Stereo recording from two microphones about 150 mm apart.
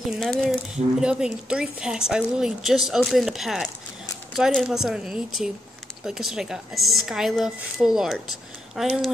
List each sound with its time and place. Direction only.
0.0 s a woman's voice: centre (ahead or behind)